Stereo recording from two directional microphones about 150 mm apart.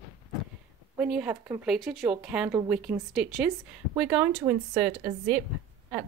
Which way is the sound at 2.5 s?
20° right (ahead or behind).